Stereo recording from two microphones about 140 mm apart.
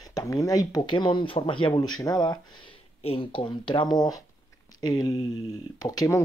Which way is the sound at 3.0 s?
40° left (ahead or behind).